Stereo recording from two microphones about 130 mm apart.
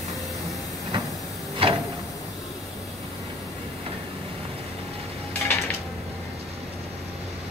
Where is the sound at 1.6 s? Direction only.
45° right (ahead or behind).